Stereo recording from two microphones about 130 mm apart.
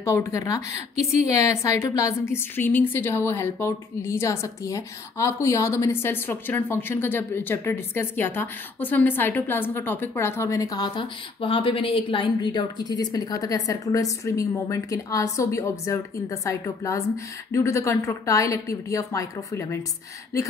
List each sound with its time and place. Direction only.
0.0 s a woman's voice: 20° left (ahead or behind)